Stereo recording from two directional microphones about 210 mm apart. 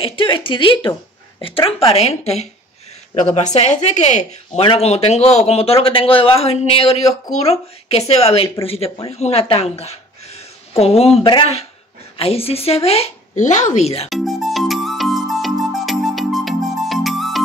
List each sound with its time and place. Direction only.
0.0 s a woman's voice: 25° left (ahead or behind)
14.0 s music: centre (ahead or behind)